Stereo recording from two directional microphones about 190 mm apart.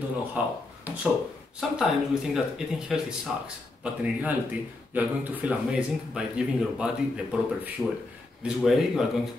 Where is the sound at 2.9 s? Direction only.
Centre (ahead or behind).